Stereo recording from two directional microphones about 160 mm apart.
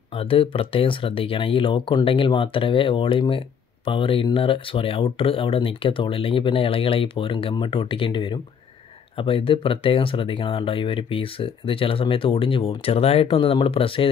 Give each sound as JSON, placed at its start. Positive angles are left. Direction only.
{"t": 0.1, "sound": "speech", "side_deg": 35}